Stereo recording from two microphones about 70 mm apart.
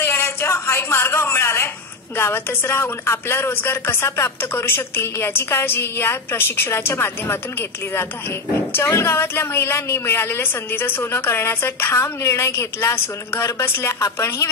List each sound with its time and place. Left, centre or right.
0.0 s a sound: left
2.1 s speech: left
8.9 s speech: left